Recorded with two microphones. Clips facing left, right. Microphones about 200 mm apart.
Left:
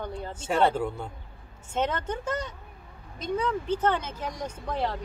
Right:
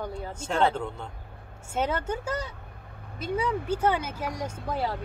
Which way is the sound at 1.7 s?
10° right (ahead or behind).